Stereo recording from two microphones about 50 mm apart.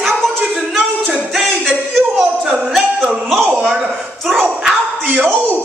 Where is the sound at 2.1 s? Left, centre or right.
Centre.